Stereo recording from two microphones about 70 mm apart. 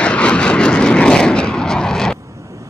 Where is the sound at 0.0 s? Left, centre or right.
Centre.